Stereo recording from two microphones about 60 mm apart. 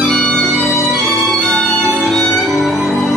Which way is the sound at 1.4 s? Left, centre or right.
Centre.